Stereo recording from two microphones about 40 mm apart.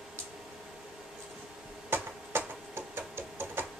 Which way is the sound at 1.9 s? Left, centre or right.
Right.